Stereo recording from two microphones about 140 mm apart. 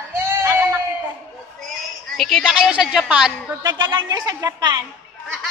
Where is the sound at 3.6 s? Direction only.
30° right (ahead or behind).